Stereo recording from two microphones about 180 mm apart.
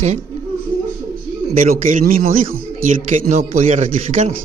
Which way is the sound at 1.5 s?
50° right (ahead or behind).